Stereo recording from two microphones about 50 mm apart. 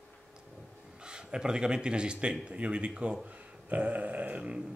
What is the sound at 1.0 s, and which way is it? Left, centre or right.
Speech, centre.